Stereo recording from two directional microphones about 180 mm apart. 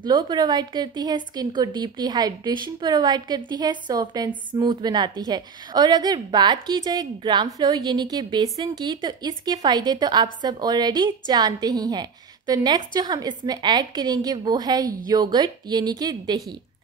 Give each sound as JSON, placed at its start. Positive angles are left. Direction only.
{"t": 0.0, "sound": "a woman's voice", "side_deg": -25}